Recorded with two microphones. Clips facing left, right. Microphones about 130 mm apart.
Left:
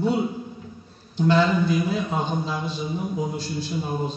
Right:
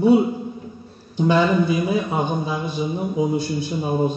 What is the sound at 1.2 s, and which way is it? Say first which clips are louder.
A man's voice: right 2 dB; 15° right (ahead or behind).